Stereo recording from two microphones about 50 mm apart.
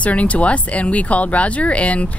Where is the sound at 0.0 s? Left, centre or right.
Left.